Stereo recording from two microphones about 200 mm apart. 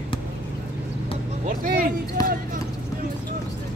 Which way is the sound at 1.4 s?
45° right (ahead or behind).